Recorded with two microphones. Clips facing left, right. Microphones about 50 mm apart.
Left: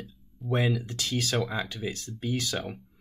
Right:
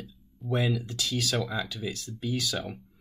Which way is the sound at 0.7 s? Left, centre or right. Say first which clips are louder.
Even; left.